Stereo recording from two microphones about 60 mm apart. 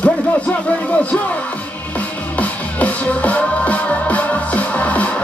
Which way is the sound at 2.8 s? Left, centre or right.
Left.